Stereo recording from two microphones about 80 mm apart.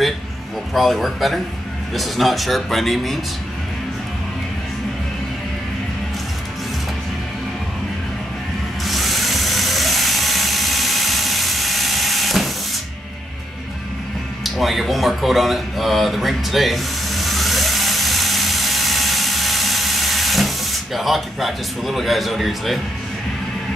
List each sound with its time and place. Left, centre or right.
0.7 s speech: centre
8.8 s drill: centre
14.4 s a sound: centre